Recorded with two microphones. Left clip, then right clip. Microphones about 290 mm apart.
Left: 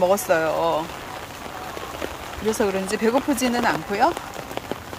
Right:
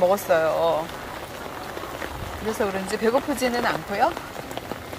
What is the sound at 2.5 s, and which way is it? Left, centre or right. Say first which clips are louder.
Speech: left 1 dB; centre.